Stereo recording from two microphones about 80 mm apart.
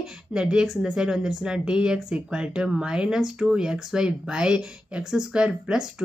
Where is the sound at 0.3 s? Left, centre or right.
Centre.